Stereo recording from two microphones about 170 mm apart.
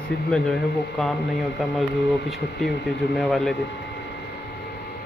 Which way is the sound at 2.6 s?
75° left (ahead or behind).